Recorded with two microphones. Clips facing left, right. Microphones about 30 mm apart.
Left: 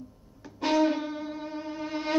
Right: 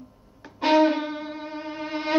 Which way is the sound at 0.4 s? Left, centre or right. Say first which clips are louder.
Right 5 dB; right.